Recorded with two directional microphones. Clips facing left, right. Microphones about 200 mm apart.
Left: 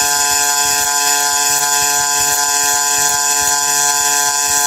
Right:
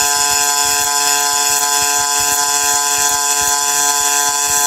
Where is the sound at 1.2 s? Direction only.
Centre (ahead or behind).